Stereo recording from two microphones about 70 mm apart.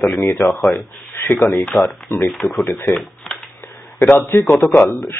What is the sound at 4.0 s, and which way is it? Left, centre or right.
A man's voice, left.